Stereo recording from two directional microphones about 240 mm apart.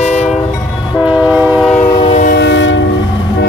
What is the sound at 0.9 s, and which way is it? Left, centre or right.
Train, centre.